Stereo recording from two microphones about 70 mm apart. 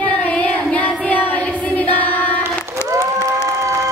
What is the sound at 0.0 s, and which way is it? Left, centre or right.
Child singing, left.